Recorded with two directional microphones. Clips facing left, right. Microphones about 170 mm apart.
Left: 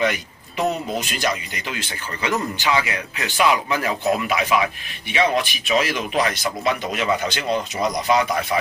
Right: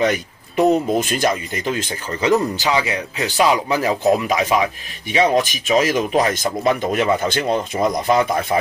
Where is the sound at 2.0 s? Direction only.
35° right (ahead or behind).